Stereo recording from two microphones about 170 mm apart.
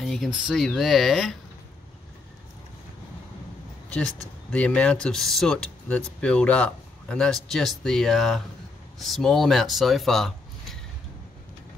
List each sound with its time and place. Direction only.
0.0 s speech: centre (ahead or behind)
4.5 s speech: 5° left (ahead or behind)